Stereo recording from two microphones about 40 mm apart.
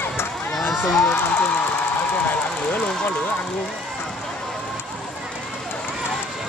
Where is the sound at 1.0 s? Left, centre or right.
Left.